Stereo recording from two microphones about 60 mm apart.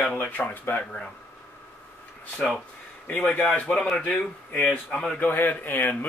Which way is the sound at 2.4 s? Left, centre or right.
Left.